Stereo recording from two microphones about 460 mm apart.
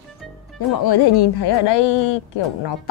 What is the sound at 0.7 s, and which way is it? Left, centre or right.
A woman's voice, left.